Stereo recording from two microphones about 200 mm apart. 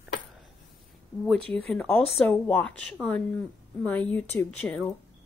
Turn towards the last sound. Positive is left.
turn(degrees=5)  # may be behind; listen again after turning